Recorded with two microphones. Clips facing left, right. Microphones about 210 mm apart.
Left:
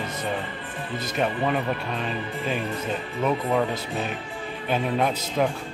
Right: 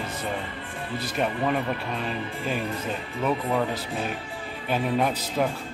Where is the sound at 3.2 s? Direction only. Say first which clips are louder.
Left 2 dB; centre (ahead or behind).